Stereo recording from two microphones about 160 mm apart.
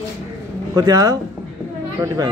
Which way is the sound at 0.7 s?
25° right (ahead or behind).